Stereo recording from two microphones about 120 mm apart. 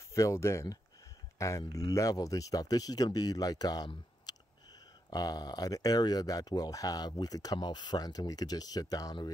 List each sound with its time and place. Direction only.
0.1 s speech: 25° left (ahead or behind)
4.3 s a sound: 35° left (ahead or behind)
5.1 s speech: 35° left (ahead or behind)